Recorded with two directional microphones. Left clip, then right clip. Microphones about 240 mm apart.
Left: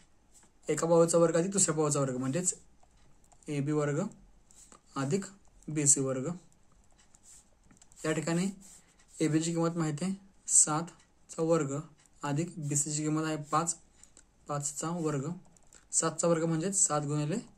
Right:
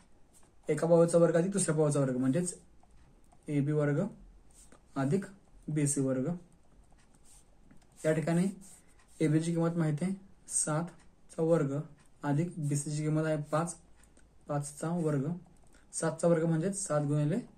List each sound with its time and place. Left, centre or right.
0.7 s speech: left
8.0 s speech: left